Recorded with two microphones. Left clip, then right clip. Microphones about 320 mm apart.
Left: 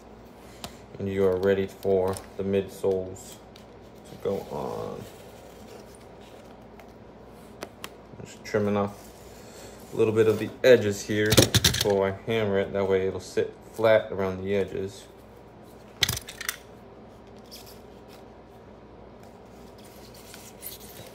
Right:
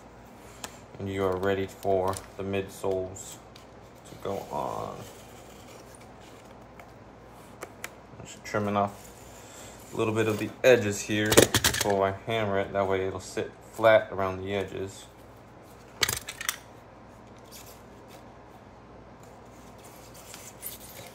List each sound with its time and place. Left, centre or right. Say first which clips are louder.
1.0 s speech: left 4 dB; centre
4.2 s speech: left 2 dB; centre
8.5 s speech: left 2 dB; centre
9.9 s speech: left 5 dB; centre
16.1 s a sound: even; centre